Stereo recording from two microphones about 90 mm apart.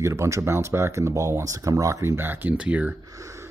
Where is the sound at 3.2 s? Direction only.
35° right (ahead or behind).